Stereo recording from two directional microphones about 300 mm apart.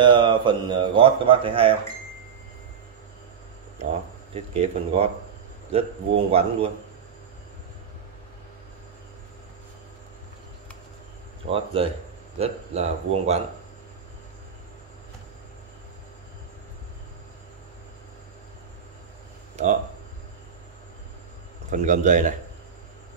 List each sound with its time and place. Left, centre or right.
0.0 s speech: centre
4.6 s a man's voice: centre
11.5 s a man's voice: centre
19.5 s a sound: right
21.6 s a man's voice: right